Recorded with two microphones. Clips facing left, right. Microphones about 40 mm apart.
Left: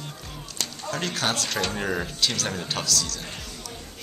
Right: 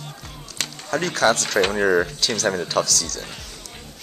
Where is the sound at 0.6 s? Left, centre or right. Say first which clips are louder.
Right 3 dB; right.